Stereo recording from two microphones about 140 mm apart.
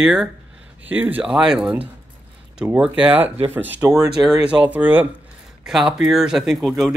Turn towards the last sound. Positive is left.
turn(degrees=0)  # may be behind; listen again after turning